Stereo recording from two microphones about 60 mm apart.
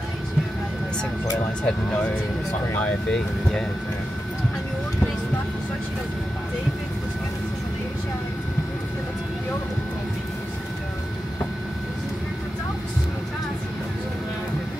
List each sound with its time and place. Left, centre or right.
1.6 s speech: left